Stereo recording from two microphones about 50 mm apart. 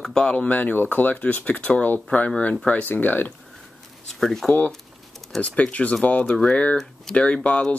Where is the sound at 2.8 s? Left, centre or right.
Left.